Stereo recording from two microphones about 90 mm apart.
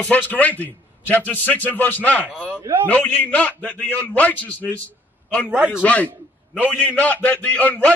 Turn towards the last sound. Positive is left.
turn(degrees=15)  # may be behind; listen again after turning